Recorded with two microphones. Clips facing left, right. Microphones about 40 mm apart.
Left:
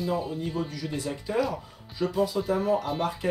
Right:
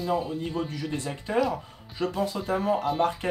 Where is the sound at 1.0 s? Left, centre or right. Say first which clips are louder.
Right 1 dB; right.